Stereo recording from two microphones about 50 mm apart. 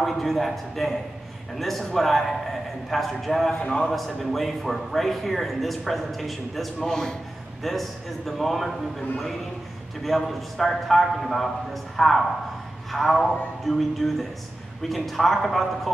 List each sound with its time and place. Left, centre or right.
0.0 s a man's voice: centre
3.5 s a man's voice: left
3.8 s a man's voice: centre
10.0 s a man's voice: centre